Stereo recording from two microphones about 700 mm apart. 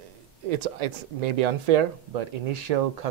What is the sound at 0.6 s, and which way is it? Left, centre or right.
Speech, right.